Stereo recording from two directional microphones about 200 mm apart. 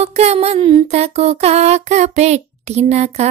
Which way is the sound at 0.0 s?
35° right (ahead or behind).